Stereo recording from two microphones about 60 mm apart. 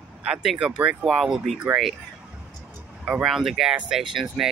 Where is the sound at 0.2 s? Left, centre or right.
Centre.